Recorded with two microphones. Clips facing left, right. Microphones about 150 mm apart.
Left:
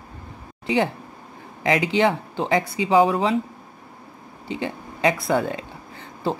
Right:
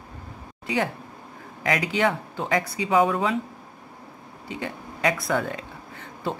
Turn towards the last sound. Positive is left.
turn(degrees=35)  # may be behind; listen again after turning